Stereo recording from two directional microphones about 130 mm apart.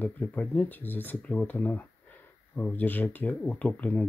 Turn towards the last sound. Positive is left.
turn(degrees=10)  # may be behind; listen again after turning